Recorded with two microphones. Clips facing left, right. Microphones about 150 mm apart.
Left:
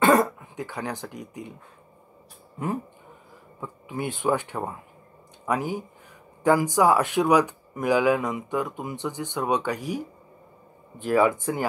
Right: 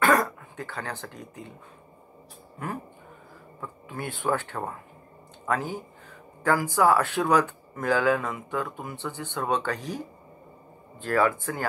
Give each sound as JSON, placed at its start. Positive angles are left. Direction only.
{"t": 0.0, "sound": "speech", "side_deg": 20}
{"t": 3.6, "sound": "speech", "side_deg": 20}